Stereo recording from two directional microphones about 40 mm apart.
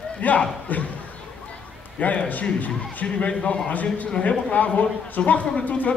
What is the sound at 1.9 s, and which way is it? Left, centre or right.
Speech, left.